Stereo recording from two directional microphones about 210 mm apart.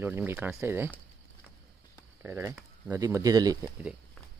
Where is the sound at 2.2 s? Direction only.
10° right (ahead or behind).